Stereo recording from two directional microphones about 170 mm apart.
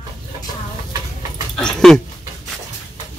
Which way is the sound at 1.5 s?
5° left (ahead or behind).